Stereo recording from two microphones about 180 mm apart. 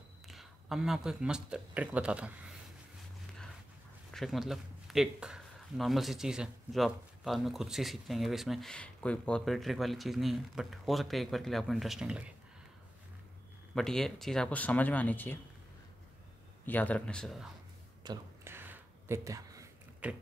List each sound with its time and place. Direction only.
0.3 s speech: centre (ahead or behind)
4.1 s speech: centre (ahead or behind)
13.7 s speech: centre (ahead or behind)
16.6 s speech: 10° left (ahead or behind)
18.0 s a sound: 20° right (ahead or behind)